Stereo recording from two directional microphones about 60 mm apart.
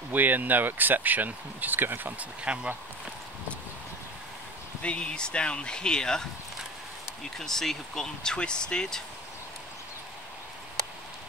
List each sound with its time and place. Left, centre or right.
0.1 s speech: right
2.4 s speech: centre
4.8 s speech: centre
7.3 s speech: centre